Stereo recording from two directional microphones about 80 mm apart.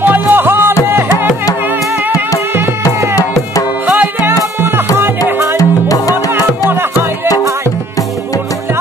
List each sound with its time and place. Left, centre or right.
0.0 s music: right
3.8 s music: right
5.6 s music: left